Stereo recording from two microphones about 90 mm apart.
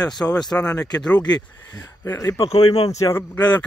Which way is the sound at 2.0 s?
35° left (ahead or behind).